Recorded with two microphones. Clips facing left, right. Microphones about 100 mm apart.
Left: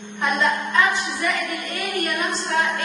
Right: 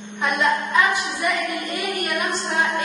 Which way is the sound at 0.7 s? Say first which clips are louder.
Even; 20° right (ahead or behind).